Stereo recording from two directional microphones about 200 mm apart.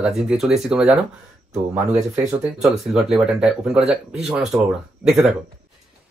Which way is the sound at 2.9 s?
Centre (ahead or behind).